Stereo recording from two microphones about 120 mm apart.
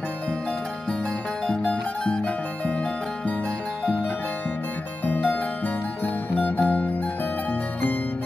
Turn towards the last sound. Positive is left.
turn(degrees=10)  # may be behind; listen again after turning